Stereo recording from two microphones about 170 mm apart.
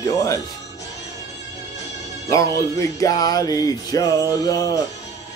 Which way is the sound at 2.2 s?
20° left (ahead or behind).